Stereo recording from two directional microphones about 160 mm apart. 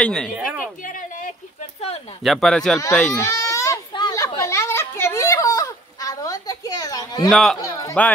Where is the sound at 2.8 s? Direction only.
15° left (ahead or behind).